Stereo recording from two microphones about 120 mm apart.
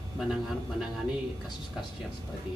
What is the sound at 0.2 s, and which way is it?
Speech, 5° right (ahead or behind).